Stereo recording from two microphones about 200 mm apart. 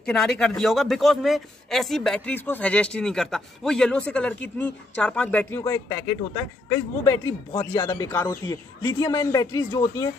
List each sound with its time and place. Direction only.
0.0 s a man's voice: 5° left (ahead or behind)